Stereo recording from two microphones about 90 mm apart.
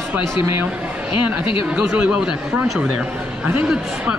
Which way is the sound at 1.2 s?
10° right (ahead or behind).